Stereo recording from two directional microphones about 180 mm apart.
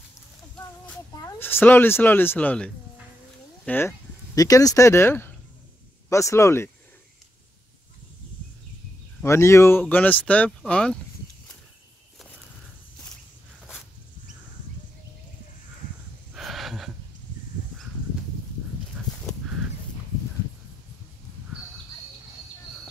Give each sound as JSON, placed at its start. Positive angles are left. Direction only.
{"t": 1.1, "sound": "speech", "side_deg": 15}
{"t": 9.2, "sound": "speech", "side_deg": 15}
{"t": 16.3, "sound": "gasp", "side_deg": 0}